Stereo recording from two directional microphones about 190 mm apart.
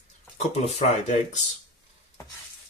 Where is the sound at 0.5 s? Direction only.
40° left (ahead or behind).